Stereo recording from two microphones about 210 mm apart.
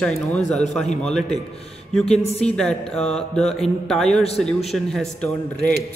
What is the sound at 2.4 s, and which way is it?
Mantra, 5° left (ahead or behind).